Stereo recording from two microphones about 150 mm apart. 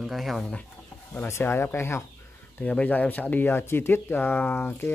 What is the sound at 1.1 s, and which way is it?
Speech, 15° left (ahead or behind).